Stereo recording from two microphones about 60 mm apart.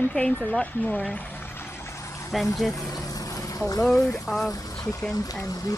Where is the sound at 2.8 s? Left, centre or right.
Left.